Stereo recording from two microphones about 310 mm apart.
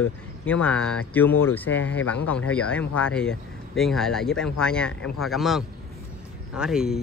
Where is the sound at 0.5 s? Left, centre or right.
Centre.